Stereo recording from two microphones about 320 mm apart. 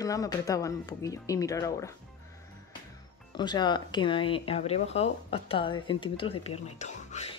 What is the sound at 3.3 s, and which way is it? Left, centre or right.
Speech, centre.